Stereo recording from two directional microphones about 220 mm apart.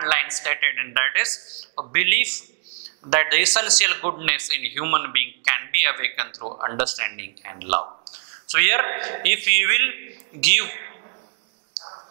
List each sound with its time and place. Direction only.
0.0 s a man's voice: 15° right (ahead or behind)
6.3 s speech: 30° right (ahead or behind)
6.7 s a man's voice: 15° right (ahead or behind)